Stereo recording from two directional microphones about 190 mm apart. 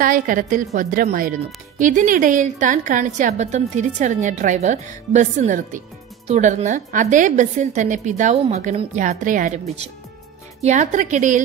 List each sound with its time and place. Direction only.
0.0 s a woman's voice: 45° right (ahead or behind)